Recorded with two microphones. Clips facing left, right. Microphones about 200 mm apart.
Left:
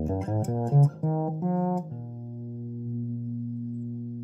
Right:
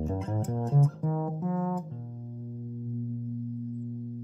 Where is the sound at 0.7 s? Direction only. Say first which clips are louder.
Left 1 dB; 50° left (ahead or behind).